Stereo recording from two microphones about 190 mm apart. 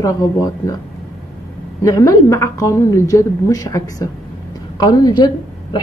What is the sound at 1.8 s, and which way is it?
A woman's voice, 15° left (ahead or behind).